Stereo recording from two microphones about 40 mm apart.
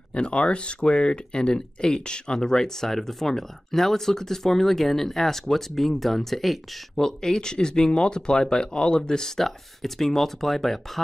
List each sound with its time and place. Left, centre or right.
0.1 s speech: left; by 6.6 s centre
7.0 s speech: centre
9.4 s speech: centre